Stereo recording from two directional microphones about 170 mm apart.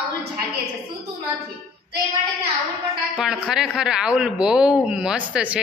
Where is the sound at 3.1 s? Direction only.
5° right (ahead or behind).